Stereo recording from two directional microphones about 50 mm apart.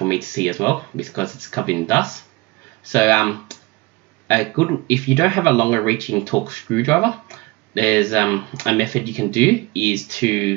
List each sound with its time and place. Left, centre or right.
0.0 s speech: left
3.5 s clicking: left
4.8 s speech: left